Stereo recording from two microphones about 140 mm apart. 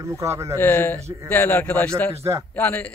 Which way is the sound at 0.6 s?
15° left (ahead or behind).